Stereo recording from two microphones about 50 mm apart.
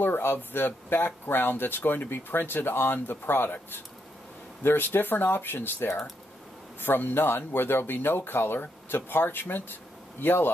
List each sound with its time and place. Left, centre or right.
0.0 s speech: left
4.6 s speech: left